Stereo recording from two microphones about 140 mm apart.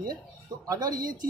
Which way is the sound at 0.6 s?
25° right (ahead or behind).